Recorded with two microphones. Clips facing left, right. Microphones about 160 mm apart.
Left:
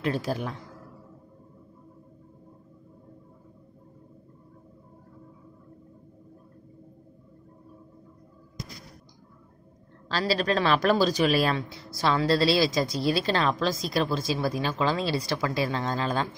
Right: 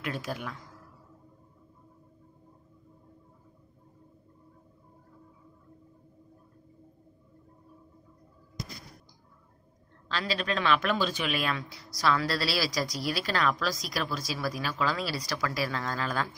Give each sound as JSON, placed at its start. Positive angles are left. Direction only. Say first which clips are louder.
{"t": 0.0, "sound": "speech", "louder": "left 7 dB", "side_deg": 30}
{"t": 10.0, "sound": "speech", "louder": "left 6 dB", "side_deg": 35}